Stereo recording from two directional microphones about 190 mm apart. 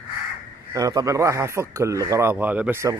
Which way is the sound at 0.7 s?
20° right (ahead or behind).